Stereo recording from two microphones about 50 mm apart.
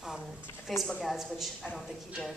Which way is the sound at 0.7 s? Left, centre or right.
Centre.